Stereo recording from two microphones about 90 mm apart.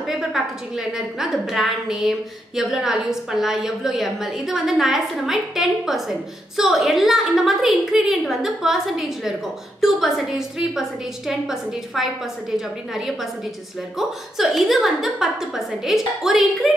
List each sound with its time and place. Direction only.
0.1 s a woman's voice: 5° right (ahead or behind)